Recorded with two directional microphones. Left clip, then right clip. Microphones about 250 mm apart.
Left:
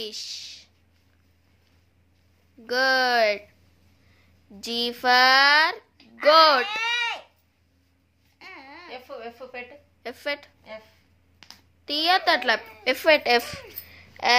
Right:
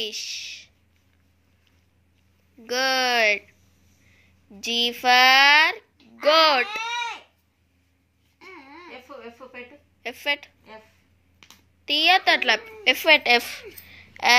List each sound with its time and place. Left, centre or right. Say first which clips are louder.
0.0 s speech: right 4 dB; centre
2.6 s speech: left 1 dB; centre
4.6 s speech: right 4 dB; centre
6.8 s a sound: left 3 dB; left
8.4 s baby cry: left 1 dB; left
10.0 s speech: right 4 dB; centre
11.8 s a woman's voice: right 3 dB; centre